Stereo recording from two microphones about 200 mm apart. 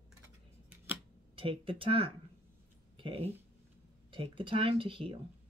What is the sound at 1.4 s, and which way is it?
Speech, 25° right (ahead or behind).